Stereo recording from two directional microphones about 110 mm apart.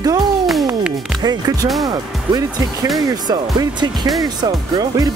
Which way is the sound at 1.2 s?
35° right (ahead or behind).